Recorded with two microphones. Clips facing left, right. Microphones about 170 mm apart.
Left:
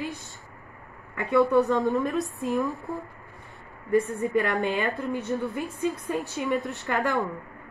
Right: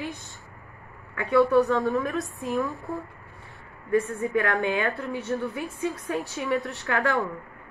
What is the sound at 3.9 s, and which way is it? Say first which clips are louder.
A woman's voice: left 1 dB; 20° left (ahead or behind).